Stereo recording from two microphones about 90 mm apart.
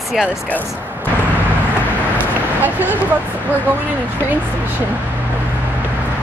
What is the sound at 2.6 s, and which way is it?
Speech, 20° right (ahead or behind).